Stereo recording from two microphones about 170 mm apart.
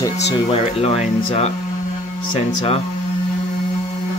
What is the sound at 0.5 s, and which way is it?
Speech, 35° left (ahead or behind).